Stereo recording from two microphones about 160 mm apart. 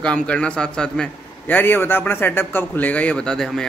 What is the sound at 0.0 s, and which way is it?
A man's voice, 5° left (ahead or behind).